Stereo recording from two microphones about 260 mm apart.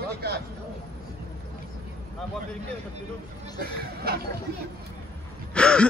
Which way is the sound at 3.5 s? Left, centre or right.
Right.